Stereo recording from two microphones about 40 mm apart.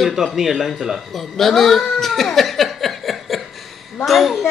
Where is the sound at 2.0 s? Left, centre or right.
Centre.